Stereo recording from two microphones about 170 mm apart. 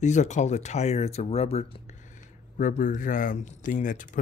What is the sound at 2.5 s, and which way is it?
Speech, 50° left (ahead or behind).